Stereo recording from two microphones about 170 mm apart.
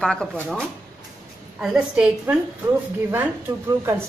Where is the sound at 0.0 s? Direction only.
5° left (ahead or behind).